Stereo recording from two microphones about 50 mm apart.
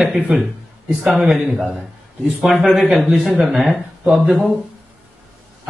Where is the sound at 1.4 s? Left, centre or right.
Centre.